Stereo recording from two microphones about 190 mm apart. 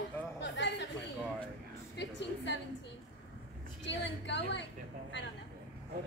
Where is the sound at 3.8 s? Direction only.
70° left (ahead or behind).